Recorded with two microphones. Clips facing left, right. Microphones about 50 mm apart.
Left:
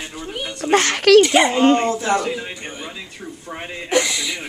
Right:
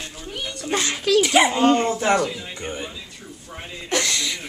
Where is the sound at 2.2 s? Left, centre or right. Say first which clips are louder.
Left 1 dB; left.